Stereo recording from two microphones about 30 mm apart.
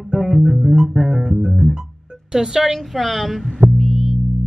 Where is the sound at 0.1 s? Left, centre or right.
Right.